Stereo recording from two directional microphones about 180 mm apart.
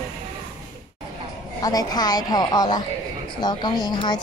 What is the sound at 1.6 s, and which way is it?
A woman's voice, 20° left (ahead or behind).